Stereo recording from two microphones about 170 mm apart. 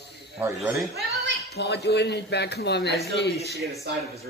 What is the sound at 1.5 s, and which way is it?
Speech, 85° left.